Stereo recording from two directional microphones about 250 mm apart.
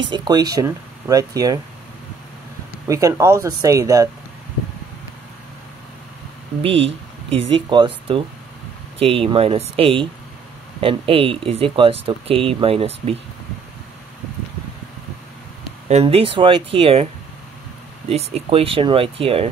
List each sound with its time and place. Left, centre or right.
0.0 s speech: centre
2.9 s speech: centre
6.6 s speech: right
15.9 s speech: right